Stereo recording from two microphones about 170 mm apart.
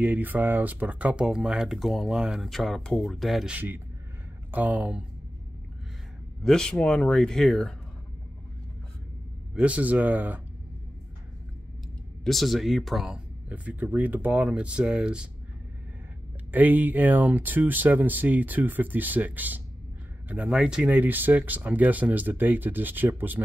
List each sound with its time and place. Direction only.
0.0 s speech: 10° right (ahead or behind)
6.4 s speech: 5° left (ahead or behind)
9.6 s speech: 10° right (ahead or behind)
12.3 s speech: centre (ahead or behind)
16.5 s speech: 10° right (ahead or behind)